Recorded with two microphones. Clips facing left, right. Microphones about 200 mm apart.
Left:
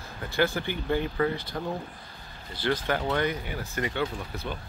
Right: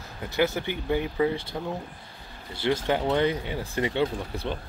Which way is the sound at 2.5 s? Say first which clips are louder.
Right 3 dB; 25° right (ahead or behind).